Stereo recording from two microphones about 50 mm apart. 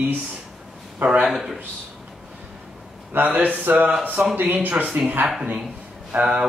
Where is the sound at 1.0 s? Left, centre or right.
Right.